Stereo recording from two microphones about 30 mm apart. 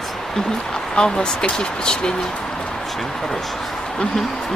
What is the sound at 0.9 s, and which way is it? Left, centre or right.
Speech, left.